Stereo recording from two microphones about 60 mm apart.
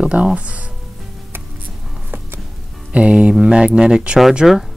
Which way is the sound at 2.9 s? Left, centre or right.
Centre.